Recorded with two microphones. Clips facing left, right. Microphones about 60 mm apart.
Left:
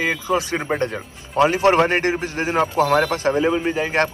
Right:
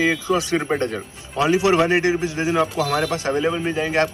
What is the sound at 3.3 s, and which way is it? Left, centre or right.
Speech, centre.